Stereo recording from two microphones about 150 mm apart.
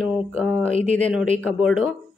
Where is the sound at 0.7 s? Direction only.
55° right (ahead or behind).